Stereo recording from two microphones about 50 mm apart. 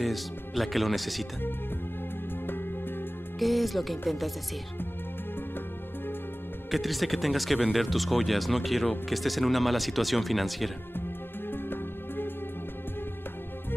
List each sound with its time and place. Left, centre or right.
0.0 s speech: centre
3.3 s speech: centre
6.7 s speech: centre
11.5 s music: left